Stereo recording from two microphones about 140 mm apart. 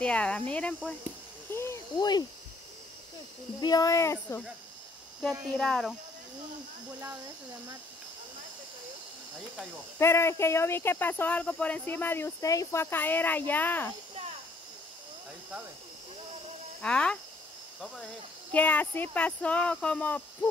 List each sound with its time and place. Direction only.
0.0 s speech: 10° left (ahead or behind)
1.5 s a sound: 20° left (ahead or behind)
3.6 s speech: 25° left (ahead or behind)
5.2 s speech: centre (ahead or behind)
9.9 s speech: 20° left (ahead or behind)
16.8 s speech: 5° left (ahead or behind)